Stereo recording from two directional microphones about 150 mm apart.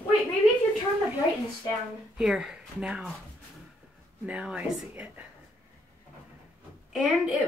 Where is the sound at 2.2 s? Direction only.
5° right (ahead or behind).